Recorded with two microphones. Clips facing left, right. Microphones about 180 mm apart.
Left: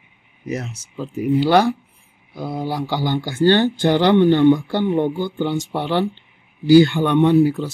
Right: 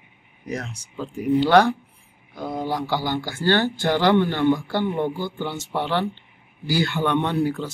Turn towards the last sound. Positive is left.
turn(degrees=10)  # may be behind; listen again after turning